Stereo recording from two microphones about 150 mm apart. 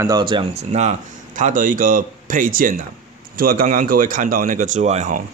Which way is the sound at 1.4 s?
60° right (ahead or behind).